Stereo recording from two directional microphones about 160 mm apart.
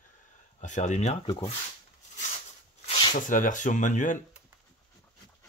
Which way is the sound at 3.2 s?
55° left (ahead or behind).